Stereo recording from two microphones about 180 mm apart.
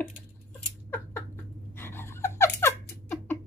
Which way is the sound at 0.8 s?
10° left (ahead or behind).